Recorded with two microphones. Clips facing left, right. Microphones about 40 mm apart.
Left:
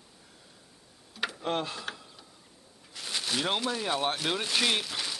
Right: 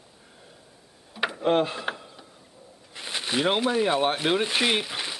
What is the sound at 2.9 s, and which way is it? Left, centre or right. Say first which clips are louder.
Speech: right 4 dB; right.